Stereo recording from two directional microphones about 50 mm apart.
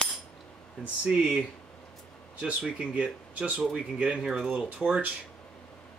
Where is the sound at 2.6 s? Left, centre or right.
Right.